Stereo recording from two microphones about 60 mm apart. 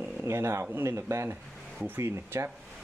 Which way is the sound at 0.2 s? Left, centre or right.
Right.